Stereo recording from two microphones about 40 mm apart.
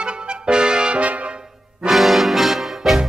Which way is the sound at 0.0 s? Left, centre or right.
Right.